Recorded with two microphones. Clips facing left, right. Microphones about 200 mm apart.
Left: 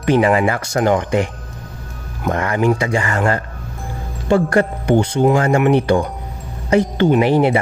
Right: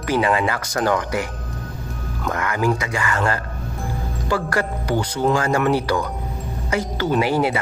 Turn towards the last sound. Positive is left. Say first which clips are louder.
# left 6 dB
turn(degrees=30)  # may be behind; listen again after turning